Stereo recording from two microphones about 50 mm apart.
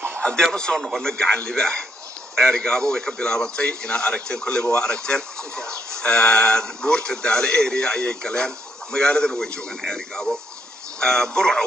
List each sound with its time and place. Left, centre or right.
0.4 s speech: centre
1.0 s speech: centre